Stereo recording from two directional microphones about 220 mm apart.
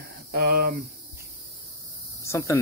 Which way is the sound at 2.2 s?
15° left (ahead or behind).